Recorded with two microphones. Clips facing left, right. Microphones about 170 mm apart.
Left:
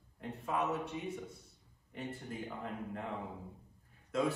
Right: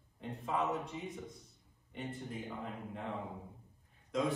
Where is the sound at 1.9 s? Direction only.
Centre (ahead or behind).